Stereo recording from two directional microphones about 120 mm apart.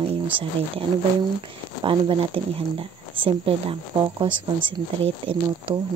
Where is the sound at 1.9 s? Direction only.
45° right (ahead or behind).